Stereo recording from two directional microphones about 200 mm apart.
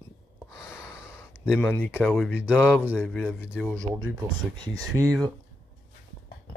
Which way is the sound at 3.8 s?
15° right (ahead or behind).